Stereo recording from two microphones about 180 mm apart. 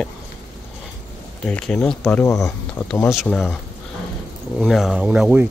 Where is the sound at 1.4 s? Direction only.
5° left (ahead or behind).